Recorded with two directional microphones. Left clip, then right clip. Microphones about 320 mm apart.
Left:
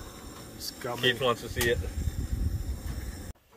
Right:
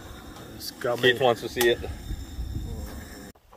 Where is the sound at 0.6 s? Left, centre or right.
Centre.